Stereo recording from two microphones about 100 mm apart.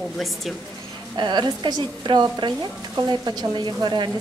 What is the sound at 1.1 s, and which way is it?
Speech, 50° right (ahead or behind).